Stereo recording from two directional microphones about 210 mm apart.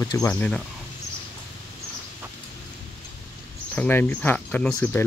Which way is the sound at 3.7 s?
10° left (ahead or behind).